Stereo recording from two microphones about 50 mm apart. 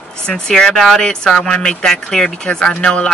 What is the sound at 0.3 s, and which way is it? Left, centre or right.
Speech, centre.